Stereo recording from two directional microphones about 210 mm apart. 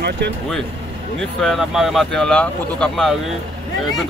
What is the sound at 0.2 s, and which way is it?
Speech, 50° right (ahead or behind).